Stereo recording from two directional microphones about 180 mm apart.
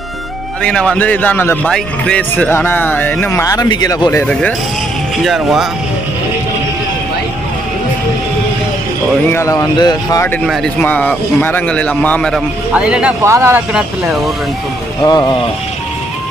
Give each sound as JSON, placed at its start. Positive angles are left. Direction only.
{"t": 0.6, "sound": "a man's voice", "side_deg": 5}
{"t": 4.3, "sound": "speech", "side_deg": 5}
{"t": 9.3, "sound": "speech", "side_deg": 15}
{"t": 10.4, "sound": "a man's voice", "side_deg": 0}
{"t": 12.7, "sound": "speech", "side_deg": -5}
{"t": 15.0, "sound": "speech", "side_deg": 20}